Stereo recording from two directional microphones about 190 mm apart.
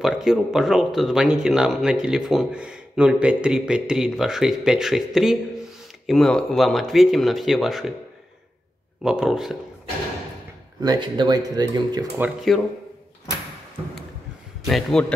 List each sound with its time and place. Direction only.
0.0 s speech: centre (ahead or behind)
9.0 s speech: centre (ahead or behind)
10.8 s speech: 25° right (ahead or behind)
12.5 s speech: centre (ahead or behind)
14.7 s speech: centre (ahead or behind)